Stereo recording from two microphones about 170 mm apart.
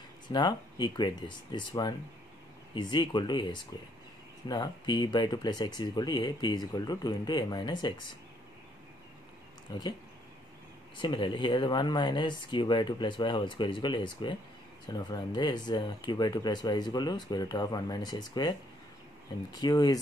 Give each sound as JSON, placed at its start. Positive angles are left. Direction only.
{"t": 0.3, "sound": "speech", "side_deg": 25}
{"t": 11.0, "sound": "speech", "side_deg": 30}
{"t": 19.5, "sound": "speech", "side_deg": 25}